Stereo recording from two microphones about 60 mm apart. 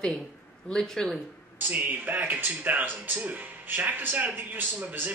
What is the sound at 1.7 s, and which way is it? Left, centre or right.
Speech, right.